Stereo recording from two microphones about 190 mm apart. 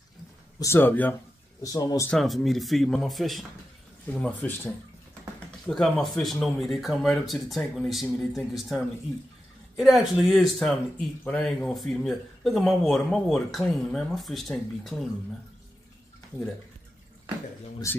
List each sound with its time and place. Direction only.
0.6 s speech: 15° left (ahead or behind)
2.0 s speech: centre (ahead or behind)
17.9 s speech: 15° left (ahead or behind)